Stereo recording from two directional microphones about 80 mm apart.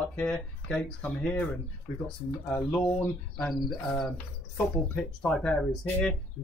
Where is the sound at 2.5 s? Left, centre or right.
Centre.